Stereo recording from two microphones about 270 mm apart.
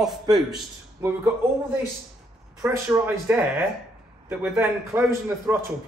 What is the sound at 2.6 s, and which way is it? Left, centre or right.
Speech, centre.